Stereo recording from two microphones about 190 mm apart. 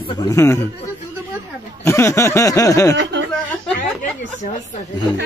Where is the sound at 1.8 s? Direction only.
15° left (ahead or behind).